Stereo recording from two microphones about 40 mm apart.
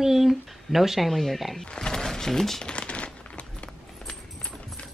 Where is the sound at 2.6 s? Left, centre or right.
Left.